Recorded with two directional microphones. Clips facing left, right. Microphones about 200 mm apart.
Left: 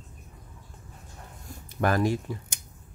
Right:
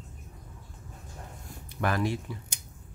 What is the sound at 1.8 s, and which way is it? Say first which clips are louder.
Speech: left 4 dB; 40° left (ahead or behind).